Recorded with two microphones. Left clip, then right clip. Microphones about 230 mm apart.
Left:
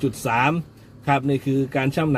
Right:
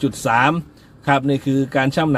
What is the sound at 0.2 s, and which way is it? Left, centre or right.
A man's voice, centre.